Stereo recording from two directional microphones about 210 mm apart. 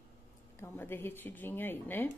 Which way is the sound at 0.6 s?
10° left (ahead or behind).